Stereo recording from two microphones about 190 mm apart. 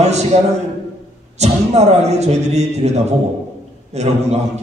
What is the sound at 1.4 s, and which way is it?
A man's voice, 35° right (ahead or behind).